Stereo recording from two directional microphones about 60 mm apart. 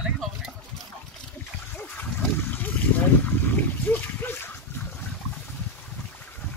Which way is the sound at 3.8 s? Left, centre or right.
Left.